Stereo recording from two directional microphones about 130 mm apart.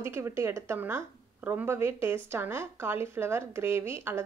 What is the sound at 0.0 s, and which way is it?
A woman's voice, 20° right (ahead or behind).